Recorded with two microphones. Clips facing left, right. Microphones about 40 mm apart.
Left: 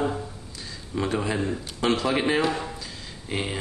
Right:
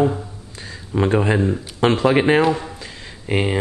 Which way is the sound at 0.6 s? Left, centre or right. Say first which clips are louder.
Right 8 dB; right.